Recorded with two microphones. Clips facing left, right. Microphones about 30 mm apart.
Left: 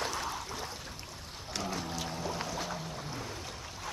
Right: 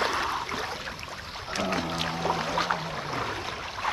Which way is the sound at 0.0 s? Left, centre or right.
Right.